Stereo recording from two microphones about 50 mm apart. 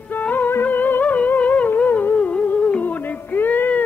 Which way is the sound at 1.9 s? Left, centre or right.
Left.